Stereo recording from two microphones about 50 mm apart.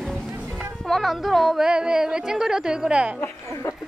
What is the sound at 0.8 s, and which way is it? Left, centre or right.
Music, centre.